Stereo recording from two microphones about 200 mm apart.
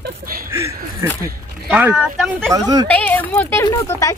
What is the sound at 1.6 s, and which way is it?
Speech, centre (ahead or behind).